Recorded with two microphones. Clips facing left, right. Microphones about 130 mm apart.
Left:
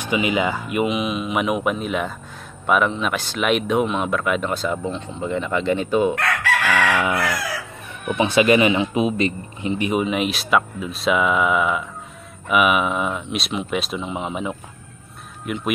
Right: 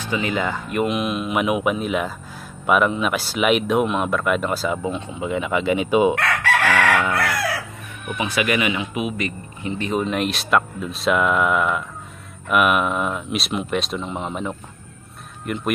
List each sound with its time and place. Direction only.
0.0 s speech: 15° left (ahead or behind); by 6.1 s 15° right (ahead or behind)
6.1 s chicken: 55° right (ahead or behind)
8.1 s speech: 30° left (ahead or behind); by 15.7 s centre (ahead or behind)